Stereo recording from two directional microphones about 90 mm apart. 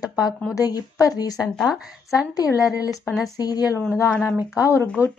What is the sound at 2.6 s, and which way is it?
A woman's voice, 40° left (ahead or behind).